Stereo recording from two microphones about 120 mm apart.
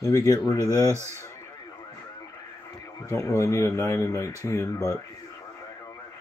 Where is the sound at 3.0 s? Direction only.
25° left (ahead or behind).